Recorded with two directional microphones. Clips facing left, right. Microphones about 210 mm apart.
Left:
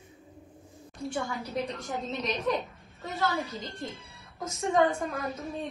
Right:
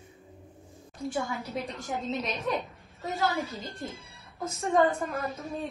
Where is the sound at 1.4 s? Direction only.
Centre (ahead or behind).